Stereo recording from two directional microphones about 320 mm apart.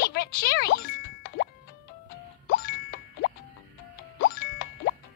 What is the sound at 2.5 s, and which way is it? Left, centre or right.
Music, left.